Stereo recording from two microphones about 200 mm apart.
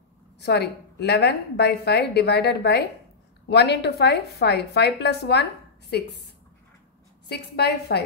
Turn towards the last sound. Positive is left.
turn(degrees=55)  # may be behind; listen again after turning